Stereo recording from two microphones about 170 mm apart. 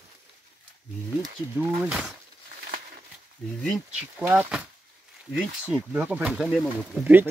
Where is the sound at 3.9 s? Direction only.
10° right (ahead or behind).